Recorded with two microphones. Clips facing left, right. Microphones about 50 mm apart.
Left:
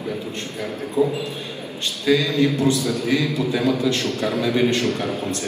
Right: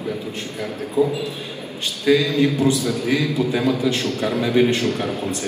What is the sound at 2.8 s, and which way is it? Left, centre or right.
A man's voice, right.